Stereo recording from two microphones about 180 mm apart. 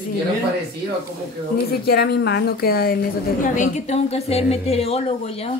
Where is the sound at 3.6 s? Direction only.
40° left (ahead or behind).